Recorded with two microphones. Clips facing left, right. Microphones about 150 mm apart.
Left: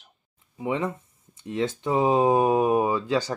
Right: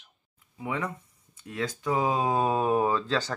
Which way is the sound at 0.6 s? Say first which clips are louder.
Left 5 dB; 25° left (ahead or behind).